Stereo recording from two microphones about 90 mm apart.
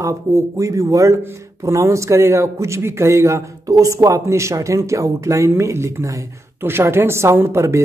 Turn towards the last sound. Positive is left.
turn(degrees=-30)  # may be behind; listen again after turning